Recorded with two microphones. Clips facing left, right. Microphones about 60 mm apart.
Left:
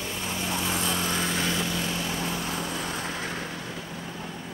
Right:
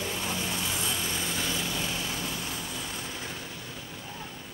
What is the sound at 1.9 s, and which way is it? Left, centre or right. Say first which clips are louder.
Vehicle: left 4 dB; left.